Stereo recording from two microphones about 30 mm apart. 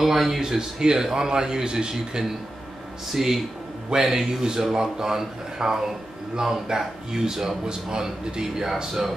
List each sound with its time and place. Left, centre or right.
0.0 s speech: centre
0.4 s a man's voice: centre
3.1 s a man's voice: centre